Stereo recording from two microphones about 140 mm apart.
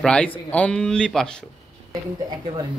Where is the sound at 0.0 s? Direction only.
5° left (ahead or behind).